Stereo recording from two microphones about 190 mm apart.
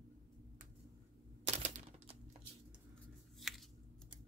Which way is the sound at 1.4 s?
35° right (ahead or behind).